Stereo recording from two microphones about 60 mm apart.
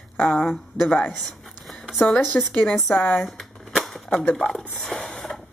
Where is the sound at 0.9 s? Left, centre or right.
Left.